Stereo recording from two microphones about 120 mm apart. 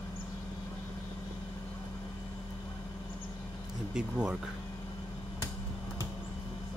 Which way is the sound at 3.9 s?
5° right (ahead or behind).